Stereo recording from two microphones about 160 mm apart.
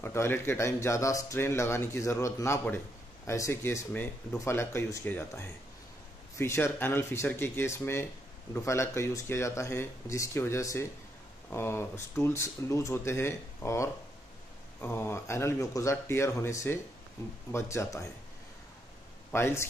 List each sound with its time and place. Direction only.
0.0 s speech: 15° left (ahead or behind)
19.3 s speech: 15° left (ahead or behind)